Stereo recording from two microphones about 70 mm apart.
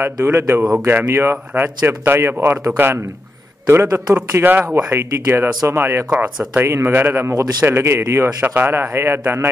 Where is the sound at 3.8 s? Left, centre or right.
Right.